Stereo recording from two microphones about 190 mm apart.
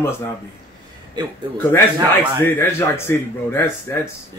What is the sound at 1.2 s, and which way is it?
Speech, 20° right (ahead or behind).